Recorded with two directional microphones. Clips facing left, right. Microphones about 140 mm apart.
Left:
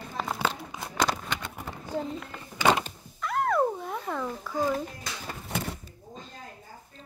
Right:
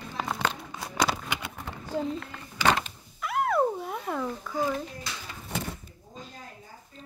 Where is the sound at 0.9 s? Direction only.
5° right (ahead or behind).